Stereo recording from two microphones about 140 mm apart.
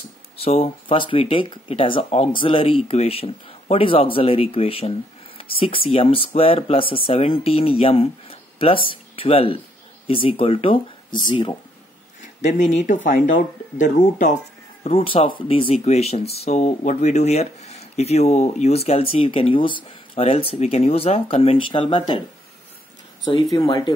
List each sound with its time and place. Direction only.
0.4 s speech: 45° left (ahead or behind)
12.4 s speech: 60° left (ahead or behind); by 22.2 s 35° left (ahead or behind)
23.5 s speech: 30° left (ahead or behind)